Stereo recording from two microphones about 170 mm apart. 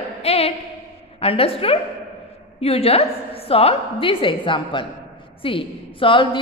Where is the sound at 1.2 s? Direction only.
35° left (ahead or behind).